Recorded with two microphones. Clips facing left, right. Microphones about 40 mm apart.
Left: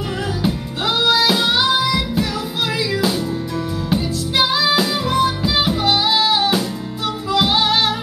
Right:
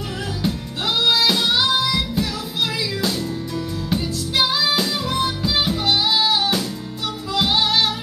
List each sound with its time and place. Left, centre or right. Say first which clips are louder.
1.1 s music: left 2 dB; centre
3.9 s music: left 3 dB; centre